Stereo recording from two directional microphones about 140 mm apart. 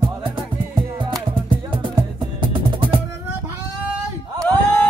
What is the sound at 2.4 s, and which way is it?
Music, 35° right (ahead or behind).